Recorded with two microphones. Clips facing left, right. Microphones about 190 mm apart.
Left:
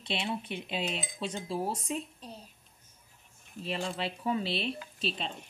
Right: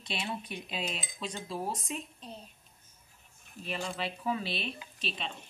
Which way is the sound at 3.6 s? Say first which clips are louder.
Left 2 dB; 30° left (ahead or behind).